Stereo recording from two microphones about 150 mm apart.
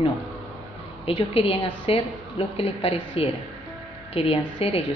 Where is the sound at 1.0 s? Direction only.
40° left (ahead or behind).